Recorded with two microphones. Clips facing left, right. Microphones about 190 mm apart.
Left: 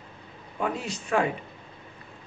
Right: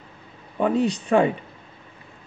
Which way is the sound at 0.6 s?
35° right (ahead or behind).